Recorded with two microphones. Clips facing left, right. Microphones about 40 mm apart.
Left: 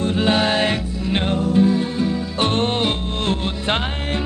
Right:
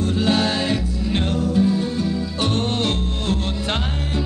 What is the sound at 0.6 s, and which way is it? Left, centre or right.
Music, left.